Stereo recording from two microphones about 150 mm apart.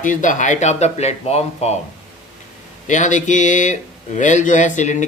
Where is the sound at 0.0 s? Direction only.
60° left (ahead or behind).